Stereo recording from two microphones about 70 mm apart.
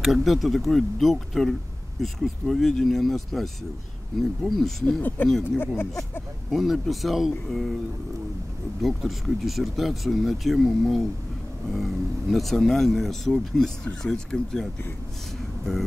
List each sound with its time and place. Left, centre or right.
0.0 s speech: centre
5.0 s speech: left
6.5 s speech: centre
8.8 s speech: centre